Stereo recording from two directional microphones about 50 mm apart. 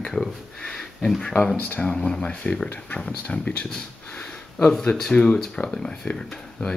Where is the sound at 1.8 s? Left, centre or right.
Centre.